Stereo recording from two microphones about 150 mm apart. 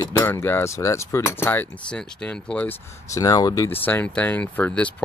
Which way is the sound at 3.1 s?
25° left (ahead or behind).